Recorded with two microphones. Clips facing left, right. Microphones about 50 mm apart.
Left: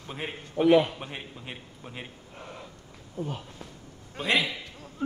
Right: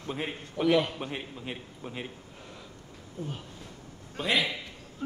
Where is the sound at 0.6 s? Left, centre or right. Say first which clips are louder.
Left 4 dB; centre.